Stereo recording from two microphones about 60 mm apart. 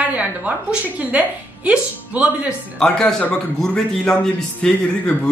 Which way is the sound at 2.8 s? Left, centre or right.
Centre.